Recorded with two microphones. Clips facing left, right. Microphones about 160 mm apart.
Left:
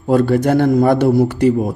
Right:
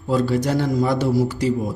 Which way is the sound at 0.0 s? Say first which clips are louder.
Left 6 dB; 55° left (ahead or behind).